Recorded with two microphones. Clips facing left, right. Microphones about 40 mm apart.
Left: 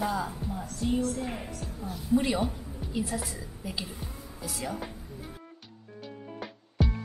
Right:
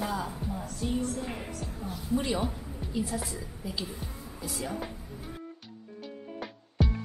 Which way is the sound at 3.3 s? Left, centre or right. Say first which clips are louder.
Right 1 dB; left.